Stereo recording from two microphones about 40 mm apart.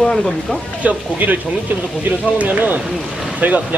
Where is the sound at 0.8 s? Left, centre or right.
Right.